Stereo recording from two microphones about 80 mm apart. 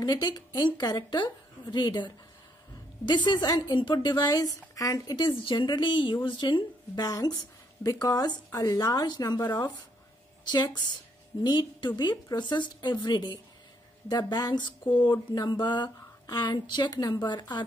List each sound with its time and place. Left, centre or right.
0.0 s a woman's voice: left
3.7 s a woman's voice: left
5.4 s speech: left
6.2 s a woman's voice: left